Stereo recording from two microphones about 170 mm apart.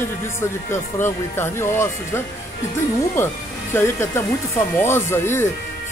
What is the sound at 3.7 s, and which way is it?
A man's voice, 15° left (ahead or behind).